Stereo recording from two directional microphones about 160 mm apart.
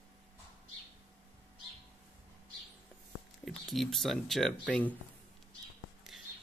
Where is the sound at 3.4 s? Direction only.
Centre (ahead or behind).